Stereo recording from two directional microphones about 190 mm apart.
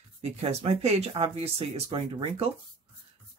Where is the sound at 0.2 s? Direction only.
35° right (ahead or behind).